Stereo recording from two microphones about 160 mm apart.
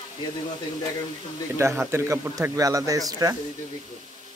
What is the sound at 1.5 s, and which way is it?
A man's voice, 15° right (ahead or behind).